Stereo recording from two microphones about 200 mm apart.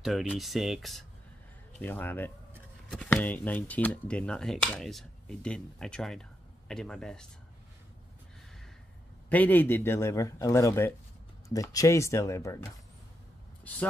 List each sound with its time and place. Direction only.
0.0 s a man's voice: centre (ahead or behind)
9.3 s a man's voice: 10° left (ahead or behind)